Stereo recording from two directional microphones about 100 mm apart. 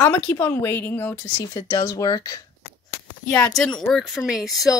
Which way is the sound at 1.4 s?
35° left (ahead or behind).